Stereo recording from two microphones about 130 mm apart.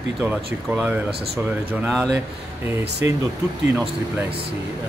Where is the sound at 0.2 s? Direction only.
10° right (ahead or behind).